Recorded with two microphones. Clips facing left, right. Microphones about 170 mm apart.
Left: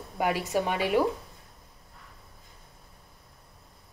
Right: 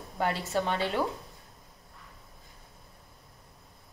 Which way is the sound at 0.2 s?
15° left (ahead or behind).